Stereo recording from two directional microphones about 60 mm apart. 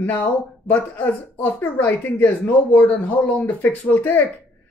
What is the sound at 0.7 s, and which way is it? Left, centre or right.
Speech, left.